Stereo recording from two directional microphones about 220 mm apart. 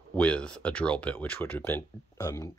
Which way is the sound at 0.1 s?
5° left (ahead or behind).